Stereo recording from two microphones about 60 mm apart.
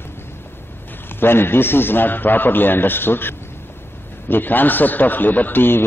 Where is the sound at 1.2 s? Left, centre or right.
Left.